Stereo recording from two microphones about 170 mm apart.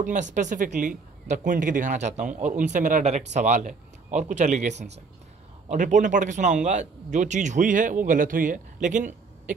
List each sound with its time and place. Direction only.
0.0 s a man's voice: 45° right (ahead or behind)